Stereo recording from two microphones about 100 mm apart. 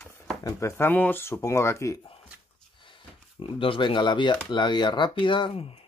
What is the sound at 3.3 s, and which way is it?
Speech, 60° left (ahead or behind).